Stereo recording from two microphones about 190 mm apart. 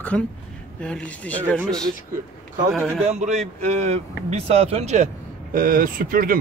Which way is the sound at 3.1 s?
35° right (ahead or behind).